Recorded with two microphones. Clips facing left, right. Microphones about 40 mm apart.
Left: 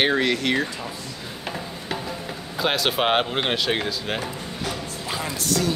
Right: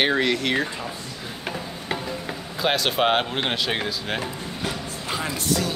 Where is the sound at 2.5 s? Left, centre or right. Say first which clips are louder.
Even; centre.